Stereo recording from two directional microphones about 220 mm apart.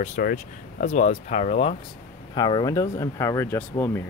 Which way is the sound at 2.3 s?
20° left (ahead or behind).